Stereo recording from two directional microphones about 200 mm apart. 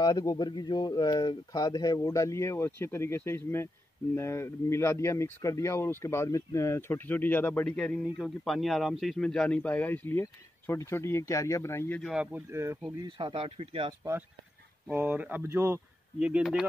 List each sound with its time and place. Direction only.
0.0 s speech: 20° left (ahead or behind); by 13.9 s 30° right (ahead or behind)
14.9 s speech: 10° right (ahead or behind)